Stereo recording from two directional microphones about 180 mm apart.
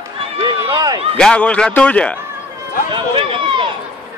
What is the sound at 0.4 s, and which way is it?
Run, 25° right (ahead or behind).